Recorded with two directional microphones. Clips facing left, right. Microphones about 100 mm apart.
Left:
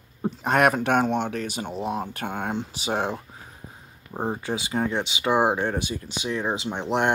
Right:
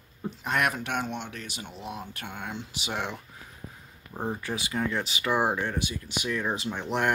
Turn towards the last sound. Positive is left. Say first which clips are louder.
# left 4 dB
turn(degrees=30)  # may be behind; listen again after turning